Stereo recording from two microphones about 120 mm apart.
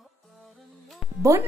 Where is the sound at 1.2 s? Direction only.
25° right (ahead or behind).